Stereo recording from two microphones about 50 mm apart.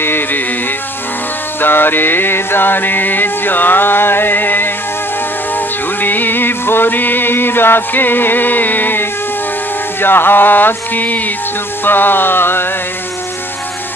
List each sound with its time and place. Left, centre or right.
0.0 s music: left
1.6 s music: left
5.9 s music: left